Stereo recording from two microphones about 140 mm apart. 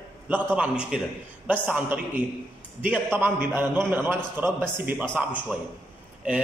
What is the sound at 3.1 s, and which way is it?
A man's voice, 15° right (ahead or behind).